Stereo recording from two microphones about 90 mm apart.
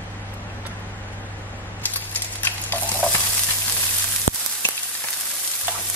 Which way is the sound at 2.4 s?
20° left (ahead or behind).